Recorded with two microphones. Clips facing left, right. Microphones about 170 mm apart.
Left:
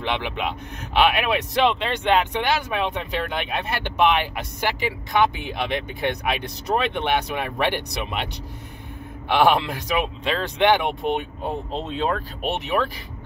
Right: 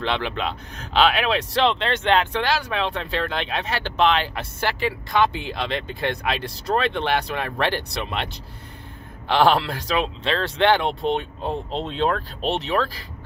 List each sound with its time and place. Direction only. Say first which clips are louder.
0.0 s speech: right 1 dB; 15° left (ahead or behind)
9.3 s speech: even; 15° left (ahead or behind)